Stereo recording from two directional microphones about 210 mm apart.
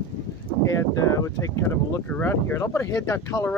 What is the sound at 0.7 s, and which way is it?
Speech, 15° left (ahead or behind).